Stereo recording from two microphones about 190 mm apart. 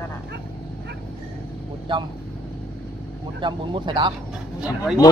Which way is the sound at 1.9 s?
25° right (ahead or behind).